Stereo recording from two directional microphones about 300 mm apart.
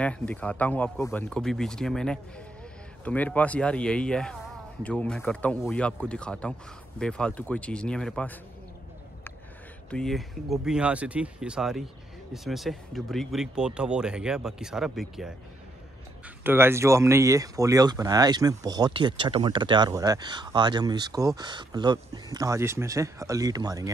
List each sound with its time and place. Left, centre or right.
0.0 s speech: centre
9.8 s speech: centre
16.4 s speech: centre